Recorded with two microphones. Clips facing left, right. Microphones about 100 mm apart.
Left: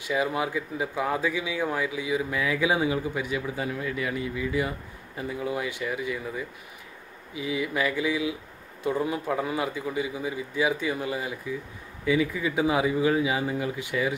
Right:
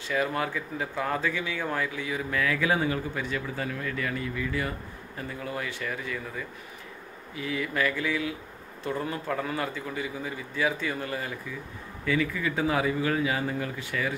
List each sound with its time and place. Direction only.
0.0 s speech: 15° left (ahead or behind)